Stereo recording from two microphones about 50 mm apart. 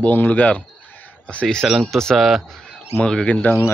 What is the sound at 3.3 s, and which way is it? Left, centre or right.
Speech, left.